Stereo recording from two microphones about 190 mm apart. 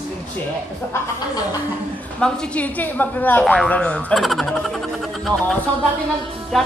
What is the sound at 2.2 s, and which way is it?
A woman's voice, 10° left (ahead or behind).